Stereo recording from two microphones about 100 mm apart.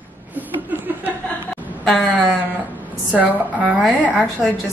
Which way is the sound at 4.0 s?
15° left (ahead or behind).